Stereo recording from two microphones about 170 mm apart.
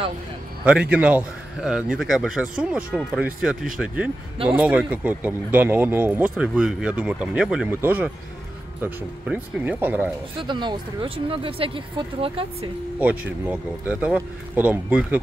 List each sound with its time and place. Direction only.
0.7 s a man's voice: 5° right (ahead or behind)
10.4 s speech: 25° right (ahead or behind)
13.0 s speech: 10° right (ahead or behind)